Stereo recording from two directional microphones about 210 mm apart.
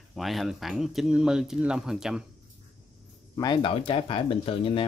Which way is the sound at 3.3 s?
20° left (ahead or behind).